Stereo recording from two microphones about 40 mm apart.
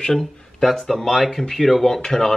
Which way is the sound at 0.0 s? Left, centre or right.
Centre.